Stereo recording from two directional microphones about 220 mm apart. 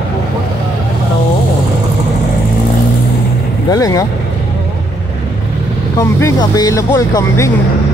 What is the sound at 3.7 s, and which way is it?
Speech, 15° left (ahead or behind).